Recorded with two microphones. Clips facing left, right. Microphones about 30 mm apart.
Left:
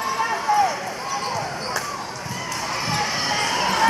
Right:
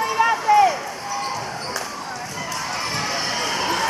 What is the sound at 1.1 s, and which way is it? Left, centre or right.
Basketball bounce, centre.